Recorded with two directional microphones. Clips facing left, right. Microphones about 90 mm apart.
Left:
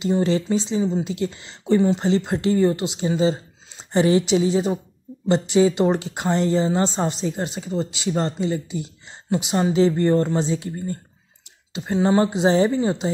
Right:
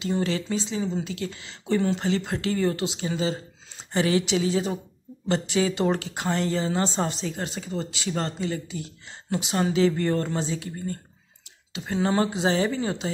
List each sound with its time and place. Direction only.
0.0 s speech: 25° left (ahead or behind)
0.8 s speech: 15° left (ahead or behind)
1.1 s speech: 25° left (ahead or behind)
1.8 s speech: 15° left (ahead or behind)